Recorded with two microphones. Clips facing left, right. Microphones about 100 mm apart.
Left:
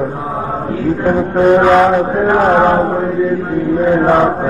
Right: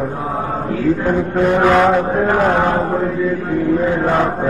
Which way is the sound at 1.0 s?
25° left (ahead or behind).